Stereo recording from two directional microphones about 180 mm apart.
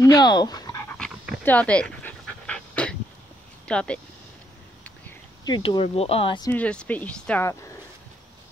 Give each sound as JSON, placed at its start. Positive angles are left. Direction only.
{"t": 0.0, "sound": "dog", "side_deg": 20}
{"t": 0.9, "sound": "dog", "side_deg": 5}
{"t": 3.6, "sound": "speech", "side_deg": 5}
{"t": 5.4, "sound": "speech", "side_deg": 25}
{"t": 6.5, "sound": "speech", "side_deg": 5}